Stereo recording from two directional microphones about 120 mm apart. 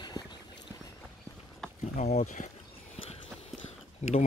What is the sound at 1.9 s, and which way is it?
Speech, 80° left.